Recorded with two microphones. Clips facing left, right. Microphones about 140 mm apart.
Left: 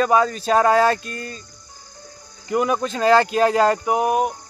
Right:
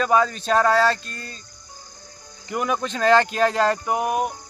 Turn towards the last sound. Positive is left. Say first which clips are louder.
# left 4 dB
turn(degrees=0)  # may be behind; listen again after turning